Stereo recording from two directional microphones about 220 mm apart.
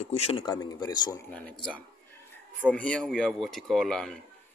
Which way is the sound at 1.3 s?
5° left (ahead or behind).